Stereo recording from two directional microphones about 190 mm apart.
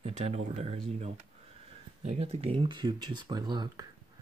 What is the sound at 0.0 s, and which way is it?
Speech, 35° right (ahead or behind).